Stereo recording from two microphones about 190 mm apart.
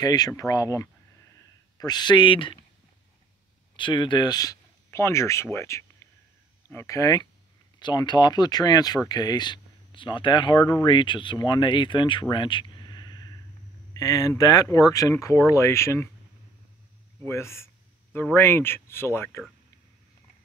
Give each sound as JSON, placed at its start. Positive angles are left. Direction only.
{"t": 0.0, "sound": "speech", "side_deg": 20}
{"t": 3.7, "sound": "speech", "side_deg": 25}
{"t": 17.2, "sound": "speech", "side_deg": 15}